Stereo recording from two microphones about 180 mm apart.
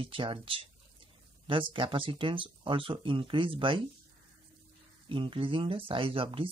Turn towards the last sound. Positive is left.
turn(degrees=-30)  # may be behind; listen again after turning